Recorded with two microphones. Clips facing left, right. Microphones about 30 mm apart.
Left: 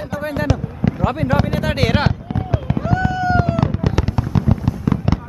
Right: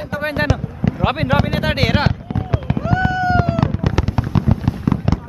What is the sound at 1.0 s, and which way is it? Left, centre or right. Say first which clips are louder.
Speech: right 3 dB; right.